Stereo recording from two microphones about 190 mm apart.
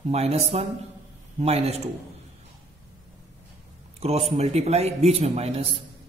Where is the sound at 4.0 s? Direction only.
35° right (ahead or behind).